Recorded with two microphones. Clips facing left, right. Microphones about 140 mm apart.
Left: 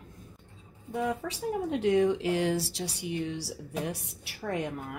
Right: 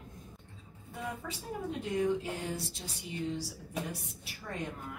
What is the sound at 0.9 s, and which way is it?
A woman's voice, 75° left (ahead or behind).